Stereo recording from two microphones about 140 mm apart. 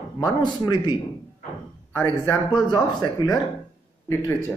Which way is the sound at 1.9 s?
20° left (ahead or behind).